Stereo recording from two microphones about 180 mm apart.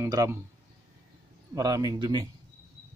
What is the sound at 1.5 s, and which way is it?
Speech, 20° right (ahead or behind).